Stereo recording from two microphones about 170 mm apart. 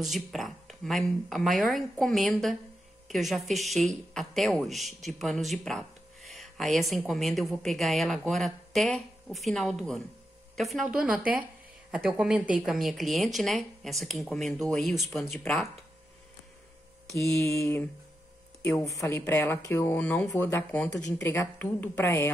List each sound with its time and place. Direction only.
0.0 s speech: centre (ahead or behind)
17.1 s speech: 15° left (ahead or behind)